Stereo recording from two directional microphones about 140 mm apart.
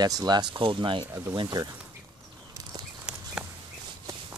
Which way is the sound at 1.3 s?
30° right (ahead or behind).